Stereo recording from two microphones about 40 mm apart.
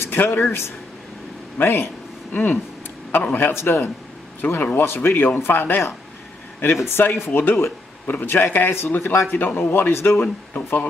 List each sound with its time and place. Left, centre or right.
0.0 s speech: left
1.6 s speech: left
3.3 s speech: left
4.7 s speech: left
6.6 s speech: left
7.2 s speech: left
8.1 s speech: left
9.6 s speech: left
10.5 s speech: left